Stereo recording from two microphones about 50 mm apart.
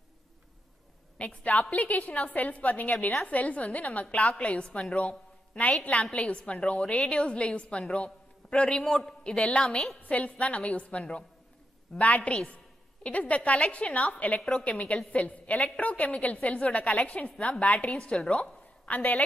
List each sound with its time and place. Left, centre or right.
1.1 s a woman's voice: left